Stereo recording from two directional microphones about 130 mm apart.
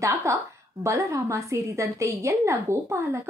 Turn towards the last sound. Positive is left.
turn(degrees=-20)  # may be behind; listen again after turning